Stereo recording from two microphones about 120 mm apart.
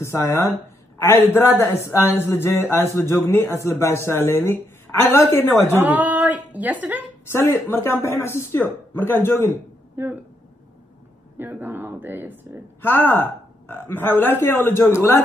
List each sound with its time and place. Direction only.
0.0 s speech: 25° left (ahead or behind)
5.7 s a woman's voice: 15° right (ahead or behind)
7.2 s speech: 20° left (ahead or behind)
9.9 s speech: 15° right (ahead or behind)
11.3 s a woman's voice: 15° right (ahead or behind)
12.8 s speech: 20° left (ahead or behind)